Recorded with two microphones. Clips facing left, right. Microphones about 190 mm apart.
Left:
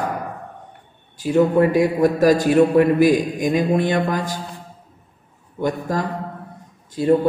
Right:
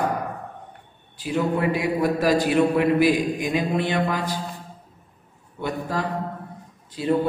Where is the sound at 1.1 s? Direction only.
45° left (ahead or behind).